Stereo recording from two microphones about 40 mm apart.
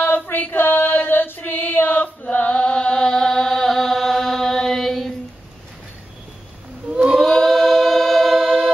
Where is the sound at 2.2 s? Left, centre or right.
Left.